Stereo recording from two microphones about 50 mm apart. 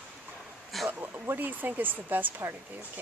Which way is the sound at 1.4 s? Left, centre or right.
Right.